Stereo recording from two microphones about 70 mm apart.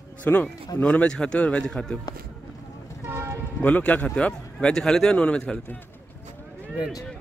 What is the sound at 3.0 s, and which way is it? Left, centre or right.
Vehicle, right.